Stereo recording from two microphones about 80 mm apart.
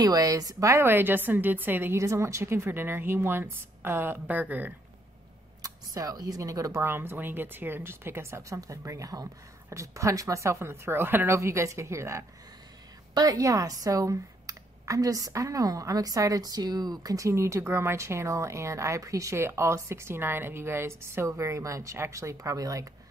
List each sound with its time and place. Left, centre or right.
0.0 s speech: right
0.8 s speech: right
2.0 s speech: right
5.6 s speech: right
6.8 s speech: right
11.3 s speech: right
13.1 s speech: right